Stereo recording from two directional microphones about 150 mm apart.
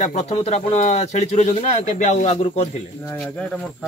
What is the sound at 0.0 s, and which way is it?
Speech, 45° left (ahead or behind).